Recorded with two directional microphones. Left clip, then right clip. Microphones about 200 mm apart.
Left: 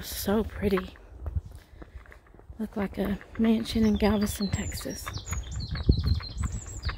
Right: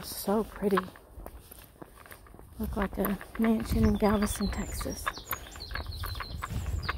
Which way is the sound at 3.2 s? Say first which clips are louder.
Left 2 dB; 55° right (ahead or behind).